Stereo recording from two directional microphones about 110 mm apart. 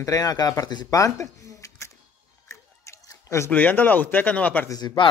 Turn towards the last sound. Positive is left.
turn(degrees=30)  # may be behind; listen again after turning